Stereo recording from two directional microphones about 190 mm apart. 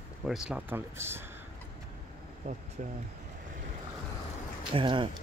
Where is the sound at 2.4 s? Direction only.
40° right (ahead or behind).